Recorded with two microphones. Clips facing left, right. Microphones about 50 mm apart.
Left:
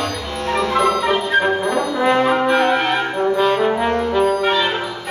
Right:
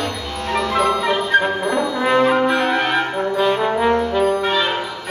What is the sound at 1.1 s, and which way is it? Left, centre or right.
Music, centre.